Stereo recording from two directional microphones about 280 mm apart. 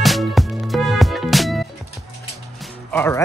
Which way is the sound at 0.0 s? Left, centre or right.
Centre.